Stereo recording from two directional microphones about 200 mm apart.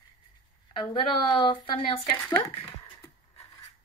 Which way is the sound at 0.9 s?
25° left (ahead or behind).